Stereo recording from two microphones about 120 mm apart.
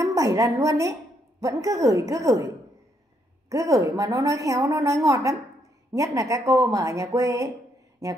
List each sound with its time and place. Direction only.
0.0 s a woman's voice: 30° right (ahead or behind)
3.4 s a woman's voice: 25° right (ahead or behind)